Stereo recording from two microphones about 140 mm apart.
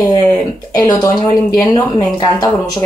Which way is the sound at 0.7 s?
25° left (ahead or behind).